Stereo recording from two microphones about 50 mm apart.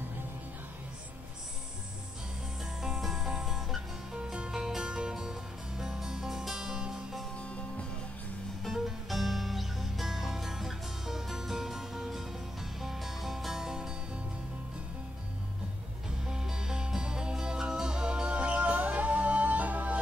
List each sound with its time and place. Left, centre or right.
2.8 s music: centre
4.1 s music: centre
8.7 s music: centre
16.3 s music: centre; by 20.0 s right